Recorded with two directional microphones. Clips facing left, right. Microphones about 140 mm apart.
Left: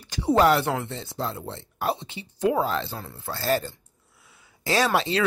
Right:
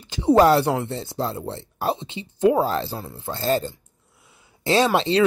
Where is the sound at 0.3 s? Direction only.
35° right (ahead or behind).